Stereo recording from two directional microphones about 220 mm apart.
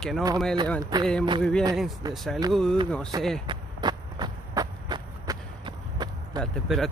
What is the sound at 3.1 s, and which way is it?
Speech, 15° right (ahead or behind).